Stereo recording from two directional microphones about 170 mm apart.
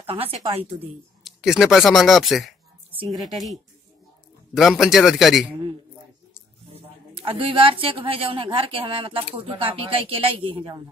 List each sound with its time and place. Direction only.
0.0 s speech: 35° right (ahead or behind)
1.2 s speech: centre (ahead or behind)
4.6 s speech: centre (ahead or behind)
6.7 s speech: 35° right (ahead or behind)